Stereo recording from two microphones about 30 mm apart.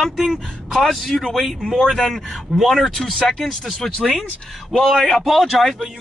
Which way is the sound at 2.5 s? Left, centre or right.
Centre.